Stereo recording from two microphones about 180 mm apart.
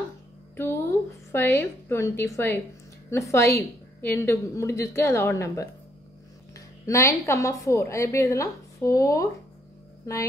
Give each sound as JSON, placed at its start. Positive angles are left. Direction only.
{"t": 1.3, "sound": "a woman's voice", "side_deg": 10}